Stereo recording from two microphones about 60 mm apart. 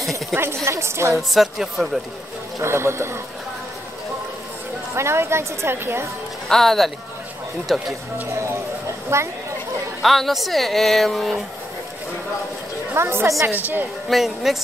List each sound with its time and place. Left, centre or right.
0.3 s a woman's voice: right
1.3 s a woman's voice: centre
2.6 s a woman's voice: right
4.9 s a woman's voice: right
6.5 s a woman's voice: centre
8.3 s a woman's voice: right
10.0 s a woman's voice: centre
12.9 s a woman's voice: right
14.0 s a woman's voice: centre